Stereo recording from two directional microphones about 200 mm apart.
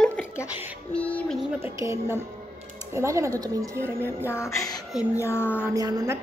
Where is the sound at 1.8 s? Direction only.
15° right (ahead or behind).